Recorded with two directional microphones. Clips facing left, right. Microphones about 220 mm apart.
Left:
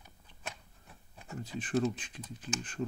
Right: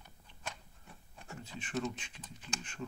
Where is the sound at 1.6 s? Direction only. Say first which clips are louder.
Left 7 dB; 35° left (ahead or behind).